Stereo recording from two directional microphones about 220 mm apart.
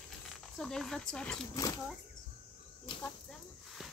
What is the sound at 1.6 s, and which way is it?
Speech, 15° left (ahead or behind).